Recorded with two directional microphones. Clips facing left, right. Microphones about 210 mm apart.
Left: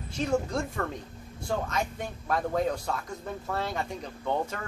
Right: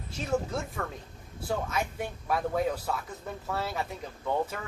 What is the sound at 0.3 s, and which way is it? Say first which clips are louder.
A man's voice: left 1 dB; 5° right (ahead or behind).